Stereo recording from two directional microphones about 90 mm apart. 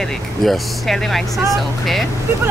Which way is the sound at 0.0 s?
5° left (ahead or behind).